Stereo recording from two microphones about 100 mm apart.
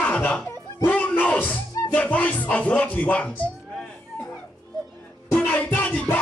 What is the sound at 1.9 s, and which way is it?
Speech, 15° left (ahead or behind).